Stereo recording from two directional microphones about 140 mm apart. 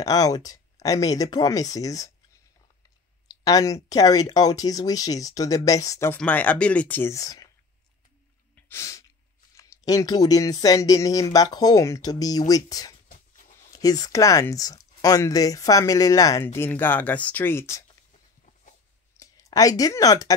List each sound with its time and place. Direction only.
0.0 s speech: 25° left (ahead or behind)
3.4 s speech: 25° left (ahead or behind)
6.1 s speech: 10° left (ahead or behind); by 7.4 s 25° left (ahead or behind)
8.5 s sneeze: 15° left (ahead or behind)
9.6 s speech: 25° left (ahead or behind)
19.1 s speech: 25° left (ahead or behind)